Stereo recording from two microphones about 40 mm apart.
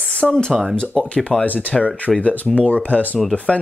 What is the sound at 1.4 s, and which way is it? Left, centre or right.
Speech, left.